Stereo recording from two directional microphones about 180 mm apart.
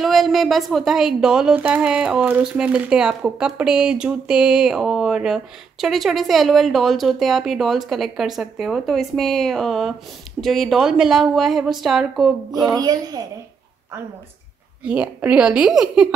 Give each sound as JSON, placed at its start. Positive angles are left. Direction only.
{"t": 0.0, "sound": "a woman's voice", "side_deg": 0}
{"t": 12.6, "sound": "speech", "side_deg": -20}
{"t": 14.8, "sound": "a woman's voice", "side_deg": -10}